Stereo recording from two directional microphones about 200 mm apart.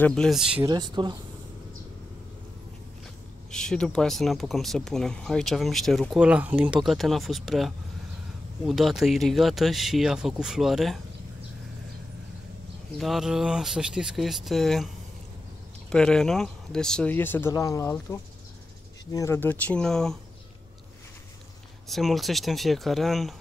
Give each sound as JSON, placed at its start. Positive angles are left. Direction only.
{"t": 0.0, "sound": "speech", "side_deg": 5}
{"t": 0.7, "sound": "speech", "side_deg": -20}
{"t": 3.5, "sound": "speech", "side_deg": 5}
{"t": 13.0, "sound": "speech", "side_deg": 0}
{"t": 15.9, "sound": "speech", "side_deg": 5}
{"t": 19.1, "sound": "speech", "side_deg": 15}
{"t": 21.8, "sound": "speech", "side_deg": 0}